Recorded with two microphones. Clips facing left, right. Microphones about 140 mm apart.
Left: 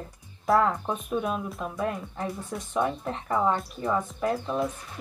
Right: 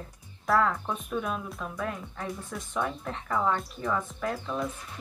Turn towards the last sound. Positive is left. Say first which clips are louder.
# left 4 dB
turn(degrees=25)  # may be behind; listen again after turning